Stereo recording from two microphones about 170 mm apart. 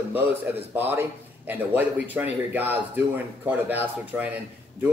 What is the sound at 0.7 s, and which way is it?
Speech, 10° right (ahead or behind).